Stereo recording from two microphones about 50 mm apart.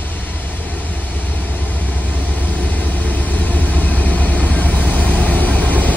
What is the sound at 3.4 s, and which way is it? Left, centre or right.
Vehicle, left.